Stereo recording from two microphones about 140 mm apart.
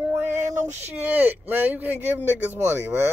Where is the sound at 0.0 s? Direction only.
15° right (ahead or behind).